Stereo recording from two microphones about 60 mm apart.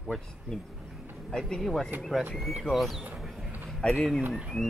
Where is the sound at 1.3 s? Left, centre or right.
Centre.